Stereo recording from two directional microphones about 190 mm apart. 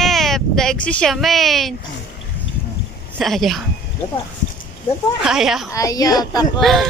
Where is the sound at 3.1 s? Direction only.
Centre (ahead or behind).